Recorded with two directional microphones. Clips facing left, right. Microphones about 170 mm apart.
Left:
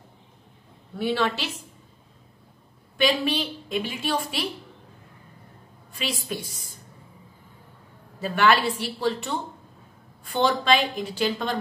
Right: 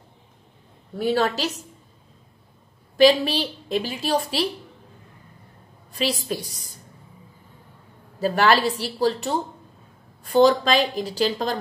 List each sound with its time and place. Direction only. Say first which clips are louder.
0.9 s a woman's voice: right 3 dB; 40° right (ahead or behind)
3.0 s a woman's voice: right 7 dB; 35° right (ahead or behind)
5.9 s a woman's voice: right 5 dB; 40° right (ahead or behind)
8.2 s a woman's voice: right 2 dB; 40° right (ahead or behind)